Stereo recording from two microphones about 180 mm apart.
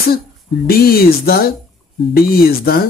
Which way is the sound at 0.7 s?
55° left (ahead or behind).